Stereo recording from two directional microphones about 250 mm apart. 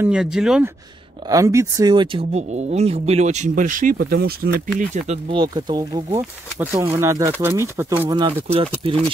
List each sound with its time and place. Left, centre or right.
0.0 s speech: centre; by 8.9 s right